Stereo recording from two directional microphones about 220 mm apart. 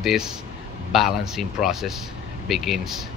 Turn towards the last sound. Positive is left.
turn(degrees=0)  # may be behind; listen again after turning